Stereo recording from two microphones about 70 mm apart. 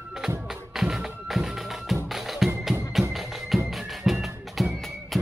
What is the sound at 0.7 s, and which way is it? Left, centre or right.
Music, centre.